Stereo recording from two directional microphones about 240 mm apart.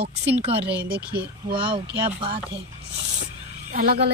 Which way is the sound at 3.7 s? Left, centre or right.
Right.